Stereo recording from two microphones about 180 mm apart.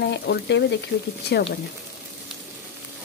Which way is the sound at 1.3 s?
65° left (ahead or behind).